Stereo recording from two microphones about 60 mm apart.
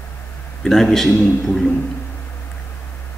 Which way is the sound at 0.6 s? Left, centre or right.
Centre.